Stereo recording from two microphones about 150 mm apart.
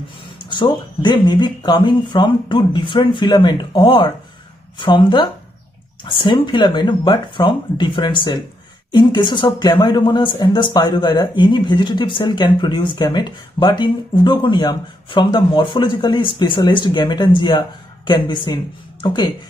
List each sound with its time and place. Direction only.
1.0 s speech: 30° left (ahead or behind)